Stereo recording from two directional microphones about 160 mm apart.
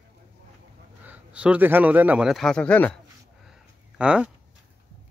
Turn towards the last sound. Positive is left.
turn(degrees=-5)  # may be behind; listen again after turning